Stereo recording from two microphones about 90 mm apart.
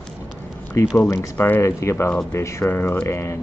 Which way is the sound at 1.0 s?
30° left (ahead or behind).